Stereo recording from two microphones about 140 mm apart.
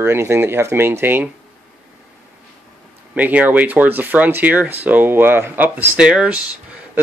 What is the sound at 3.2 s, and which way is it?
Speech, 10° right (ahead or behind).